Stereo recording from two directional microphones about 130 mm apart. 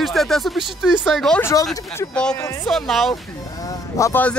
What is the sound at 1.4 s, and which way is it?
Speech, 25° left (ahead or behind).